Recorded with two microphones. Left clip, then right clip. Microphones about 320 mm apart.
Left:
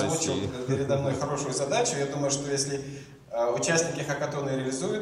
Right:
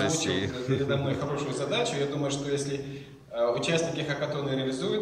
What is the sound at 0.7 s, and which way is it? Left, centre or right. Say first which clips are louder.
A man's voice: left 2 dB; left.